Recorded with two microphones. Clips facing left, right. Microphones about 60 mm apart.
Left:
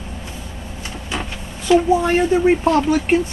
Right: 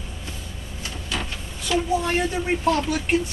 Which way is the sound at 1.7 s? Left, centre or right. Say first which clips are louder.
Left 8 dB; left.